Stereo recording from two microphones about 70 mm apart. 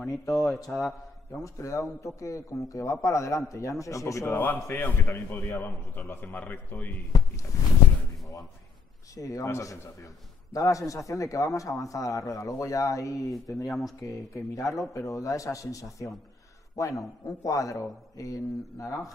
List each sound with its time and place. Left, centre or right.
0.2 s a man's voice: left
0.7 s a man's voice: centre
1.4 s a man's voice: left
4.3 s a man's voice: left
7.1 s a man's voice: left
9.1 s a man's voice: left
13.7 s a man's voice: centre
14.0 s a man's voice: left